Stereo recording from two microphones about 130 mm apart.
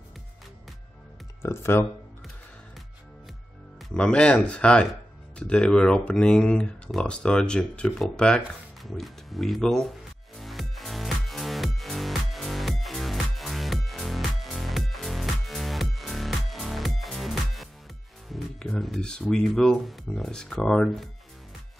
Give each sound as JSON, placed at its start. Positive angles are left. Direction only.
{"t": 1.4, "sound": "speech", "side_deg": 20}
{"t": 3.9, "sound": "speech", "side_deg": 10}
{"t": 8.8, "sound": "music", "side_deg": 0}
{"t": 18.3, "sound": "speech", "side_deg": 0}